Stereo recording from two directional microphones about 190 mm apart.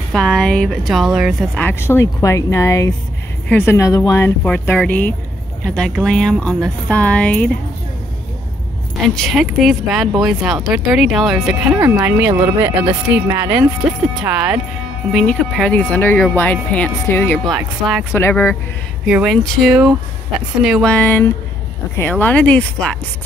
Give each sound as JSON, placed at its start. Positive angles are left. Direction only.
{"t": 0.1, "sound": "speech", "side_deg": 5}
{"t": 9.0, "sound": "speech", "side_deg": 0}
{"t": 11.8, "sound": "speech", "side_deg": -15}
{"t": 13.1, "sound": "speech", "side_deg": -10}
{"t": 17.5, "sound": "speech", "side_deg": 0}
{"t": 18.1, "sound": "speech", "side_deg": 10}
{"t": 19.0, "sound": "speech", "side_deg": -5}